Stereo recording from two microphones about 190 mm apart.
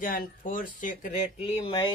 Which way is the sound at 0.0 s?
45° left (ahead or behind).